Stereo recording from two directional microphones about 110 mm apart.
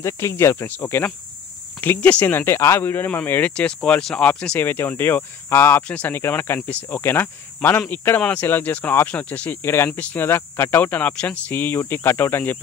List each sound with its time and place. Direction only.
0.0 s speech: 25° left (ahead or behind)